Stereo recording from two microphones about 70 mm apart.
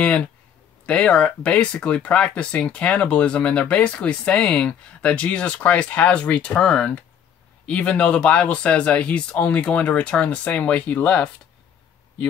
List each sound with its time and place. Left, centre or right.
0.8 s speech: centre